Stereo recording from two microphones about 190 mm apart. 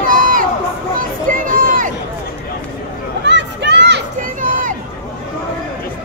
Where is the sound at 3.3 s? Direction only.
65° right (ahead or behind).